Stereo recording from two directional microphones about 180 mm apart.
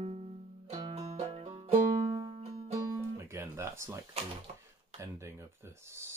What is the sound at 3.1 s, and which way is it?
Music, 15° right (ahead or behind).